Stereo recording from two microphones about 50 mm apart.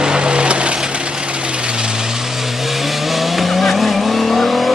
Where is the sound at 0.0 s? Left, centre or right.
Centre.